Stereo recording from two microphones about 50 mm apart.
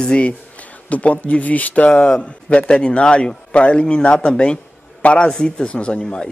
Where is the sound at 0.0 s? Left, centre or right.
Left.